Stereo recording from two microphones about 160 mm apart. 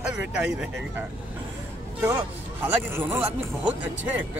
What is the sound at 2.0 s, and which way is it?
Speech, 15° right (ahead or behind).